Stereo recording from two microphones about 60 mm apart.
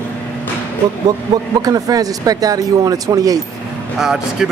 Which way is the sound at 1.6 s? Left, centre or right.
Right.